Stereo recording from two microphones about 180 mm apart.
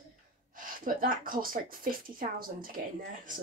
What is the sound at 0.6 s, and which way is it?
Speech, 50° right (ahead or behind).